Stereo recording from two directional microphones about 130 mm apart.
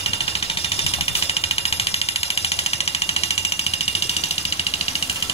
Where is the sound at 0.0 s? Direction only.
50° left (ahead or behind).